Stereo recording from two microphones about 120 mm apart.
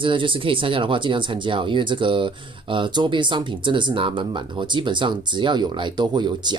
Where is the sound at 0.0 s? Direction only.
45° right (ahead or behind).